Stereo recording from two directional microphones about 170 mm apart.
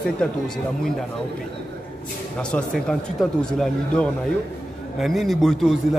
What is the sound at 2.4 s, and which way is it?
Speech, 5° left (ahead or behind).